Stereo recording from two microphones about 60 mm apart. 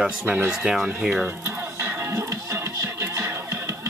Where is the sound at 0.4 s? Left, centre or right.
Right.